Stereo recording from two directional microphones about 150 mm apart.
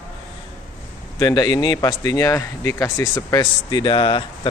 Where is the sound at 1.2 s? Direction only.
25° left (ahead or behind).